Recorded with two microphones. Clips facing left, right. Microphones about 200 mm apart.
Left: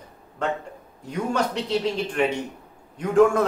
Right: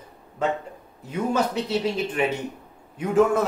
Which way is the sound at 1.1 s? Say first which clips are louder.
Right 1 dB; 5° right (ahead or behind).